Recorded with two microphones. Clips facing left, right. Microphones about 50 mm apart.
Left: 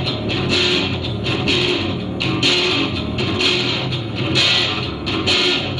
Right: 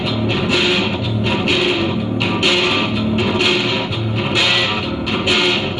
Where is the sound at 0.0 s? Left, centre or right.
Centre.